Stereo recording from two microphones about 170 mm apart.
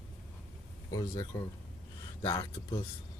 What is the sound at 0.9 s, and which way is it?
Speech, 20° left (ahead or behind).